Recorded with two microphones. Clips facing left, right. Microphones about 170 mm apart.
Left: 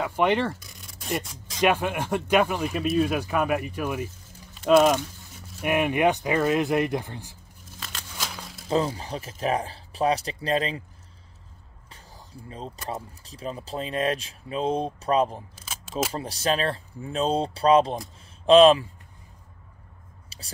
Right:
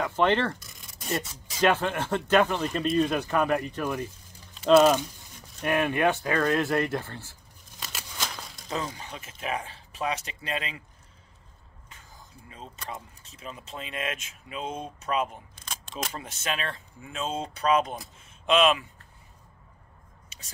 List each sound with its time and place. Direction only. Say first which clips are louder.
0.0 s speech: left 1 dB; 10° left (ahead or behind)
0.6 s a sound: left 2 dB; centre (ahead or behind)
1.6 s speech: left 1 dB; 10° left (ahead or behind)
5.6 s speech: left 2 dB; 15° left (ahead or behind)
8.2 s a sound: even; 5° left (ahead or behind)
8.6 s speech: left 8 dB; 30° left (ahead or behind)
11.9 s speech: left 5 dB; 35° left (ahead or behind)
15.5 s single-lens reflex camera: left 1 dB; 5° left (ahead or behind)
16.1 s speech: left 6 dB; 35° left (ahead or behind)
20.2 s a sound: left 7 dB; 35° left (ahead or behind)